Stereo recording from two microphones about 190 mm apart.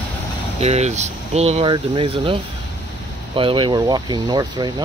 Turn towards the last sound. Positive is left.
turn(degrees=-20)  # may be behind; listen again after turning